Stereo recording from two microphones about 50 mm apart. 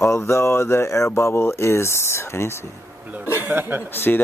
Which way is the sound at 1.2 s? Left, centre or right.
Left.